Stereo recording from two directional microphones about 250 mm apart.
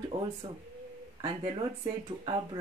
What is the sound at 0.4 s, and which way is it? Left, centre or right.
Speech, right.